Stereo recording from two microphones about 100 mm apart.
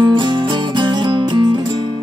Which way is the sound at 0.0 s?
50° right (ahead or behind).